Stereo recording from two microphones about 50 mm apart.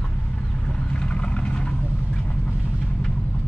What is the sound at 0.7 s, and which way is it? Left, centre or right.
Vehicle, centre.